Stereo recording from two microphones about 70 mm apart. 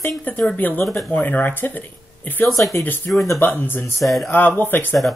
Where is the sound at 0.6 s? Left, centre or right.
Left.